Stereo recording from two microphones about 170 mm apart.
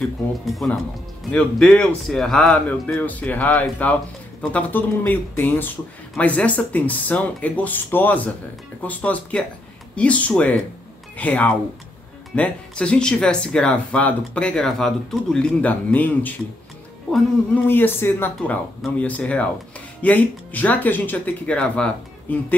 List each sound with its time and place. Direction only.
0.6 s speech: 5° left (ahead or behind)
17.6 s speech: 10° left (ahead or behind)